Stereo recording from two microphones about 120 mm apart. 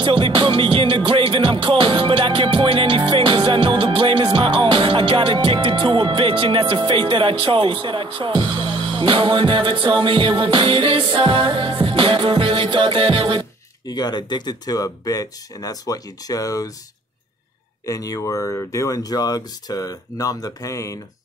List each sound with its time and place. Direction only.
0.0 s music: 45° right (ahead or behind)
13.8 s speech: 35° left (ahead or behind)
17.8 s speech: 30° left (ahead or behind)